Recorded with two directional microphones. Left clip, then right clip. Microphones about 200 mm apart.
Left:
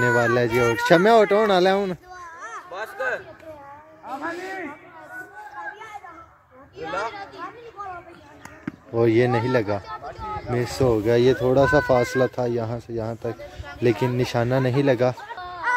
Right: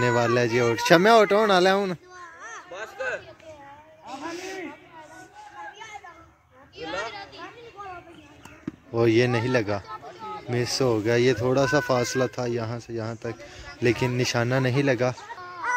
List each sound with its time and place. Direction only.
0.0 s speech: centre (ahead or behind)
2.1 s a sound: 65° left (ahead or behind)
4.1 s music: centre (ahead or behind)
6.8 s children playing: 60° left (ahead or behind)
8.9 s speech: centre (ahead or behind)